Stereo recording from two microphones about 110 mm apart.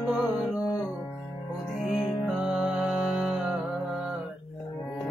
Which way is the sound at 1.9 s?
5° right (ahead or behind).